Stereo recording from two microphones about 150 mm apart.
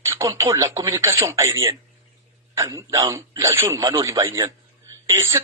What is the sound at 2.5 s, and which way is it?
A man's voice, 20° right (ahead or behind).